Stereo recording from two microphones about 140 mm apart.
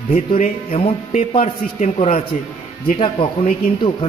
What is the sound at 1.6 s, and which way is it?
Speech, 60° left (ahead or behind).